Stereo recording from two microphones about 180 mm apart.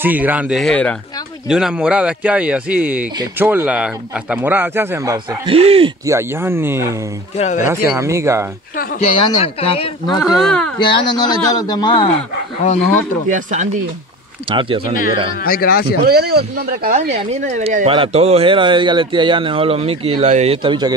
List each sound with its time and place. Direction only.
0.0 s speech: 10° right (ahead or behind); by 5.9 s 30° right (ahead or behind)
6.0 s speech: 15° right (ahead or behind)
7.3 s speech: 40° left (ahead or behind)
8.0 s speech: 15° right (ahead or behind)
9.0 s speech: 35° left (ahead or behind)
10.2 s speech: centre (ahead or behind)
10.8 s a man's voice: 25° left (ahead or behind)
13.3 s speech: 45° right (ahead or behind)
14.5 s speech: 30° right (ahead or behind)
15.4 s speech: 55° left (ahead or behind)
16.0 s speech: 60° right (ahead or behind)
17.1 s speech: 40° right (ahead or behind)